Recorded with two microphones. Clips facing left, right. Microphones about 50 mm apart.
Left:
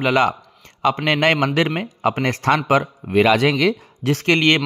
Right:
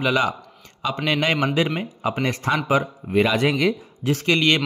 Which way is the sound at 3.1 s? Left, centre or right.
Left.